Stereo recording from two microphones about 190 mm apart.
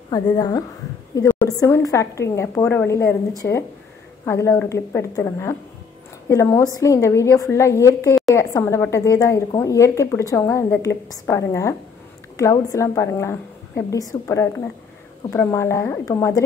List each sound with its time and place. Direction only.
0.1 s a woman's voice: 20° left (ahead or behind)